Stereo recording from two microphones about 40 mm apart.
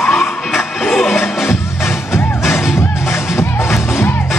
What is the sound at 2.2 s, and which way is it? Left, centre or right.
Music, left.